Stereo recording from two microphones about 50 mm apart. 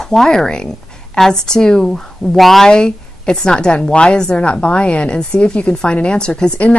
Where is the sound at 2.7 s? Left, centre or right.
Centre.